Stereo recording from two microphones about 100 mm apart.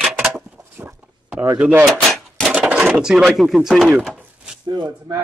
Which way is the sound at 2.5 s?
10° right (ahead or behind).